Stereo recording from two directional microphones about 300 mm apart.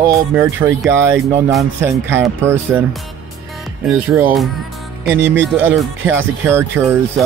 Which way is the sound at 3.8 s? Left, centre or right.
Centre.